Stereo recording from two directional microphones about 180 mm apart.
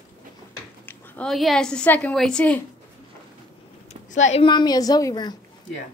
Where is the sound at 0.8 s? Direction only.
10° left (ahead or behind).